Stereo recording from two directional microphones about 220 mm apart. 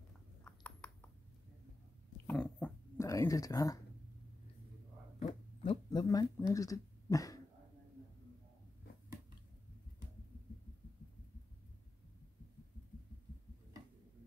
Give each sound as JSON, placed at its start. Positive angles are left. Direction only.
{"t": 0.4, "sound": "a sound", "side_deg": 5}
{"t": 2.2, "sound": "dog", "side_deg": 5}
{"t": 5.2, "sound": "speech", "side_deg": 25}